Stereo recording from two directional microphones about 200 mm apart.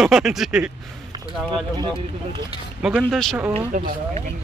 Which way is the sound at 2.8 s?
5° right (ahead or behind).